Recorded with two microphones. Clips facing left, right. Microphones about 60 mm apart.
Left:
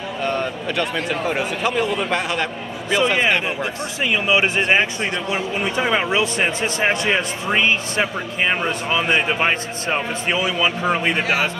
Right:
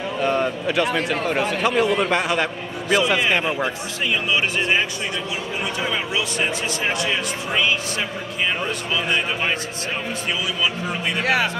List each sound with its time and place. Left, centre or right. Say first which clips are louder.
0.2 s a man's voice: right 2 dB; centre
4.0 s speech: left 3 dB; left
4.6 s speech: left 3 dB; left